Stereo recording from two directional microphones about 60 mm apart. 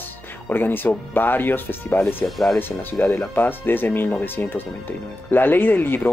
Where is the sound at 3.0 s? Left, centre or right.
Left.